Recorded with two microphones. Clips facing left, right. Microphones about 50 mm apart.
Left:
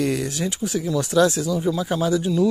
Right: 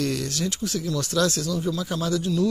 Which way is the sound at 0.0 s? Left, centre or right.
Centre.